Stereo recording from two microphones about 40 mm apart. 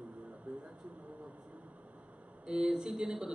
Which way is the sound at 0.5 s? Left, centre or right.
Right.